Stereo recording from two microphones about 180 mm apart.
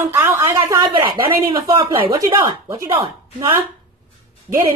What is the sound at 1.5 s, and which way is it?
A woman's voice, 25° right (ahead or behind).